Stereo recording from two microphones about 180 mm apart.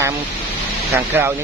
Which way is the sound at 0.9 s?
15° right (ahead or behind).